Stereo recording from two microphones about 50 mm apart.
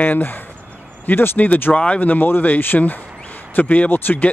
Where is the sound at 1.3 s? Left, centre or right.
Left.